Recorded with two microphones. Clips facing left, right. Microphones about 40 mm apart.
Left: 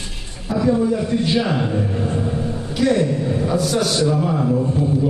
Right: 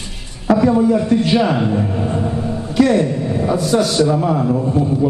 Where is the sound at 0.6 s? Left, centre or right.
Right.